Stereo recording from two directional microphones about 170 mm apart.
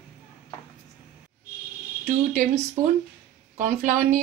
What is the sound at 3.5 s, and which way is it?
Speech, 45° right (ahead or behind).